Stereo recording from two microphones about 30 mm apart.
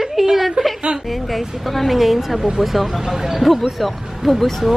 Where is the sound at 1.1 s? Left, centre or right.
Centre.